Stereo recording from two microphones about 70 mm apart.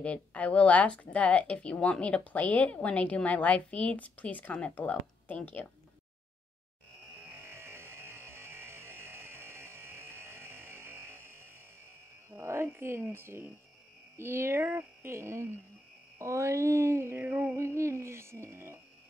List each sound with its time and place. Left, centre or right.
0.0 s speech: centre
7.4 s a sound: right
12.3 s speech: right
17.2 s speech: right
17.7 s speech: right